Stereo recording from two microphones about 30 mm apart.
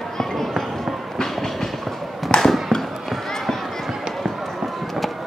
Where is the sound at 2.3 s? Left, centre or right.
Left.